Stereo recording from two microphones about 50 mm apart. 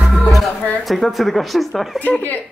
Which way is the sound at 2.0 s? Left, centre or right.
Left.